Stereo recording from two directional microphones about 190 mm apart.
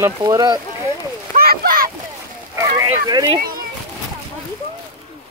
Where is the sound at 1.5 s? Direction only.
50° right (ahead or behind).